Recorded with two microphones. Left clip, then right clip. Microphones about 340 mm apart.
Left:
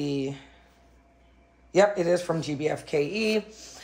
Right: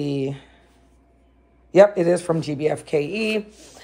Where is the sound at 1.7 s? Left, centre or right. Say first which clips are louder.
Right 7 dB; right.